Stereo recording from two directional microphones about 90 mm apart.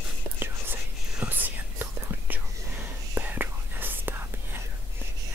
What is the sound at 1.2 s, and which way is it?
Whispering, 20° right (ahead or behind).